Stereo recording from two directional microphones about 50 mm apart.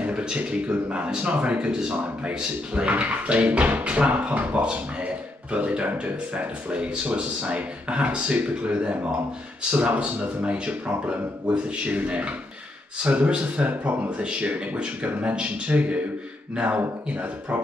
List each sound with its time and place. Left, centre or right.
0.0 s speech: right
1.7 s speech: centre
2.2 s speech: right